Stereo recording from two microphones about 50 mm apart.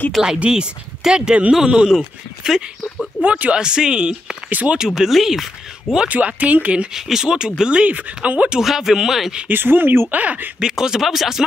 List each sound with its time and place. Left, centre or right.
0.4 s speech: centre
3.2 s speech: right
4.5 s speech: right
4.7 s speech: centre
6.0 s speech: right
6.9 s speech: centre; by 8.5 s right
8.5 s speech: centre
9.5 s speech: right
10.1 s speech: right
10.6 s speech: centre